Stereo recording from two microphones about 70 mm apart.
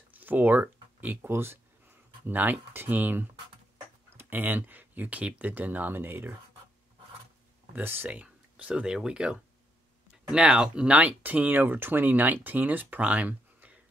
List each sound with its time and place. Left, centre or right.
0.1 s speech: right
7.7 s speech: right